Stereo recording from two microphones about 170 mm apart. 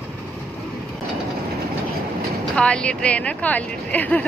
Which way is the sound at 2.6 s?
5° left (ahead or behind).